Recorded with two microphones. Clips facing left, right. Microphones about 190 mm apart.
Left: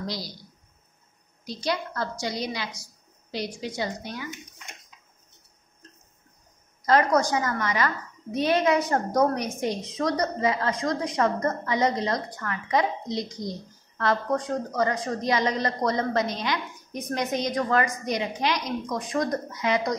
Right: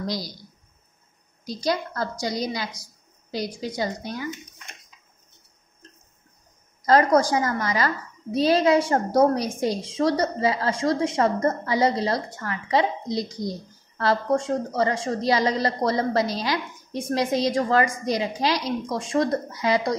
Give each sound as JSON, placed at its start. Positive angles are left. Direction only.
{"t": 1.4, "sound": "a woman's voice", "side_deg": -40}
{"t": 6.9, "sound": "a woman's voice", "side_deg": -35}